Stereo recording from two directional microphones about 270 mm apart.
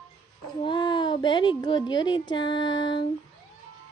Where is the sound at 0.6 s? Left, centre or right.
Centre.